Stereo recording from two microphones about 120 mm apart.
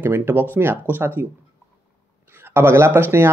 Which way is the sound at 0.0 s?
20° right (ahead or behind).